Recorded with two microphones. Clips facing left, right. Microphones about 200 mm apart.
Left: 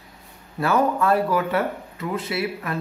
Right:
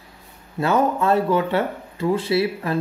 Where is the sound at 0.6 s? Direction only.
25° right (ahead or behind).